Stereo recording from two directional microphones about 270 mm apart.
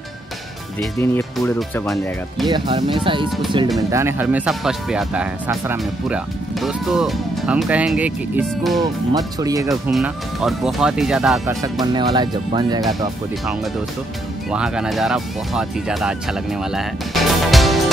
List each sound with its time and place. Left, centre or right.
0.9 s speech: centre
2.4 s speech: centre
3.9 s speech: centre
9.8 s speech: centre
11.8 s speech: centre
14.5 s speech: centre